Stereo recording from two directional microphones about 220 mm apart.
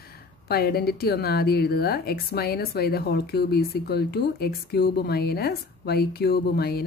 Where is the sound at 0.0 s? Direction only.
45° left (ahead or behind).